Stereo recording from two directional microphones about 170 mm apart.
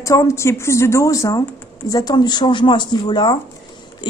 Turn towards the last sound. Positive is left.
turn(degrees=25)  # may be behind; listen again after turning